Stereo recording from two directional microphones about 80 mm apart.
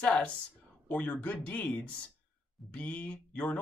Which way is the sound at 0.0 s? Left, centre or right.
Centre.